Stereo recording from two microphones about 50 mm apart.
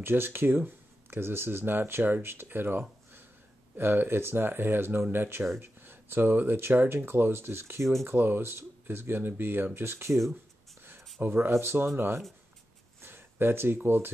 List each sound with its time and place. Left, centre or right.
0.0 s speech: right
8.2 s speech: right
11.1 s speech: right
13.0 s a sound: right
13.8 s speech: right